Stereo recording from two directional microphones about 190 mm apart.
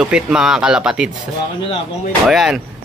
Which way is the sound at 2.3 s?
Centre (ahead or behind).